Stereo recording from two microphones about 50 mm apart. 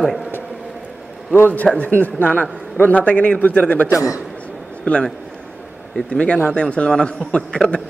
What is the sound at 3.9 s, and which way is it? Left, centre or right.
Speech, left.